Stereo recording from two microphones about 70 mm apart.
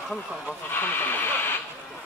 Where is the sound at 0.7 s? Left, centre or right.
Left.